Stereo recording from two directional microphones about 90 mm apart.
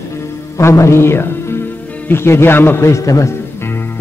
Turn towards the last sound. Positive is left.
turn(degrees=25)  # may be behind; listen again after turning